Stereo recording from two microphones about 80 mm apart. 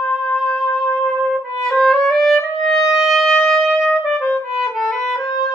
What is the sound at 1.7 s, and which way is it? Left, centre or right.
Music, centre.